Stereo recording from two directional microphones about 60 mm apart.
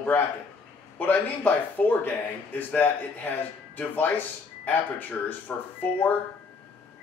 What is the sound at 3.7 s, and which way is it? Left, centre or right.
A man's voice, left.